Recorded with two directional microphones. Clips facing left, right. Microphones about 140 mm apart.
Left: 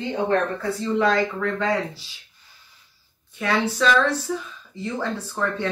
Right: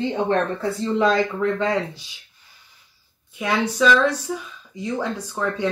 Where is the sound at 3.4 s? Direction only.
15° right (ahead or behind).